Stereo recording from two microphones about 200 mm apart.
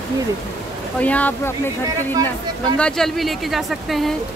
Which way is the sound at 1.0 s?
10° left (ahead or behind).